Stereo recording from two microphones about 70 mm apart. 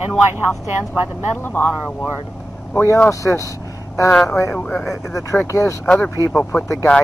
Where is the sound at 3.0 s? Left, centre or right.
Left.